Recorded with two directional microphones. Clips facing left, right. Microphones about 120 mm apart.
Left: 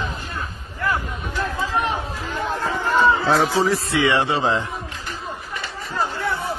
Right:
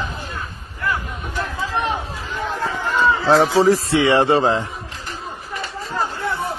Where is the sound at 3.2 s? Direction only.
25° right (ahead or behind); by 4.6 s 40° right (ahead or behind).